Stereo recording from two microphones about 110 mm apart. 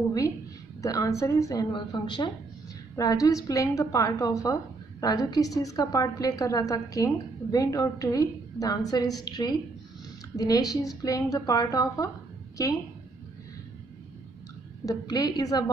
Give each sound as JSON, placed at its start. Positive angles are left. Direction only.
{"t": 0.8, "sound": "a woman's voice", "side_deg": 30}
{"t": 1.7, "sound": "a woman's voice", "side_deg": 45}
{"t": 3.0, "sound": "a woman's voice", "side_deg": 30}
{"t": 14.9, "sound": "a woman's voice", "side_deg": 35}